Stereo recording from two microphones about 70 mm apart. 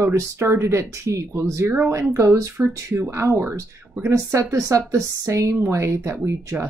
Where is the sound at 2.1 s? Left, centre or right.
Right.